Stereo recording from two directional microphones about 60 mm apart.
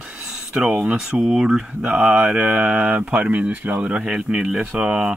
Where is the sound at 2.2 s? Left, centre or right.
Right.